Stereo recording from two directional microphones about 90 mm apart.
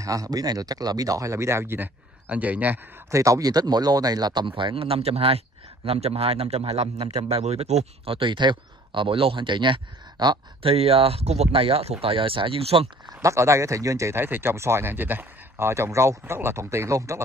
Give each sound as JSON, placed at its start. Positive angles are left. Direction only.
{"t": 0.0, "sound": "speech", "side_deg": -40}
{"t": 2.2, "sound": "speech", "side_deg": -15}
{"t": 3.1, "sound": "a man's voice", "side_deg": -35}
{"t": 10.6, "sound": "a man's voice", "side_deg": -90}
{"t": 13.2, "sound": "speech", "side_deg": -35}